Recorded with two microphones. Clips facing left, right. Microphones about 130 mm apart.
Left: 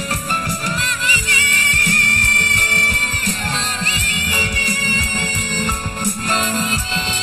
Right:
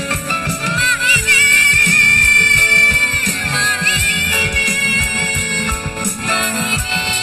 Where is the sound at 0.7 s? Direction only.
40° left (ahead or behind).